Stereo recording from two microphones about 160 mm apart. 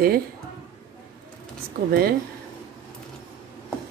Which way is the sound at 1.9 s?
70° right (ahead or behind).